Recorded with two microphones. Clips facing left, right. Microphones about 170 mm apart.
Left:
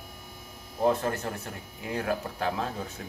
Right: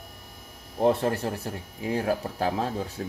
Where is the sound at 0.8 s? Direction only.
30° right (ahead or behind).